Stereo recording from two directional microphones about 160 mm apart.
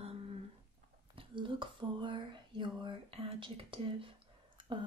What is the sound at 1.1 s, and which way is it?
Speech, 30° right (ahead or behind).